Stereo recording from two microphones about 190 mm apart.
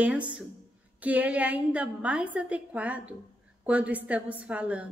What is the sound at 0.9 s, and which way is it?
A woman's voice, 10° right (ahead or behind).